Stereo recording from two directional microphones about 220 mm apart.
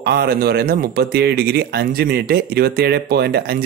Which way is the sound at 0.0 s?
45° right (ahead or behind).